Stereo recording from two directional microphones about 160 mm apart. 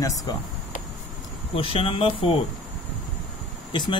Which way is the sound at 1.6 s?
35° left (ahead or behind).